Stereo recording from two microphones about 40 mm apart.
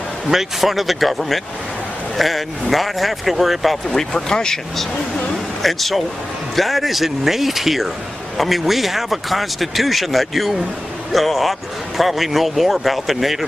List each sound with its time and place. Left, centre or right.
0.3 s speech: centre
3.9 s speech: centre
5.3 s speech: centre